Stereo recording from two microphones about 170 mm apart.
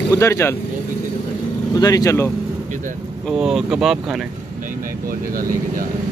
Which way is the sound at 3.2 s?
Centre (ahead or behind).